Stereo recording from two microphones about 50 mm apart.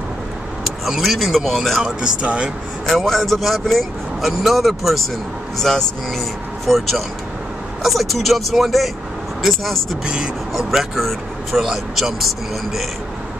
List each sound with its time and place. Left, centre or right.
0.8 s speech: centre
2.0 s speech: right
2.9 s speech: centre
10.0 s speech: centre
10.5 s speech: centre